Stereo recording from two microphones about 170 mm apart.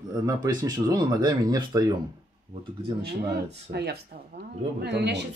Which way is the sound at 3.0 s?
70° right (ahead or behind).